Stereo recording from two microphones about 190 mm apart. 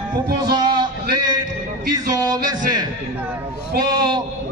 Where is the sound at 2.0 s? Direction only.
20° right (ahead or behind).